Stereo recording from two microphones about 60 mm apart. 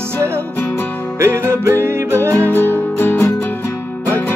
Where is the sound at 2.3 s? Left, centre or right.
Left.